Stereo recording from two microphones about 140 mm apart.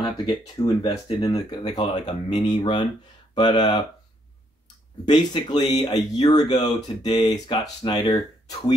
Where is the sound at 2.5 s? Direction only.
35° left (ahead or behind).